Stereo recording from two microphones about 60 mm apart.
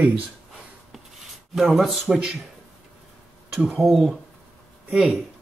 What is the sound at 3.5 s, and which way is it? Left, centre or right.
Speech, right.